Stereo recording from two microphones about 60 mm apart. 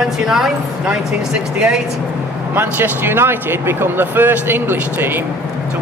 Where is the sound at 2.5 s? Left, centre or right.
Right.